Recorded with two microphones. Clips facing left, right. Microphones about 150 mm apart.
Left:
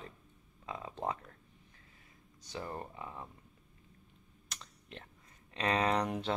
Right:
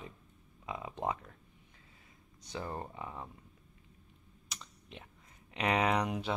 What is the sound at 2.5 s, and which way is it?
Speech, 20° right (ahead or behind).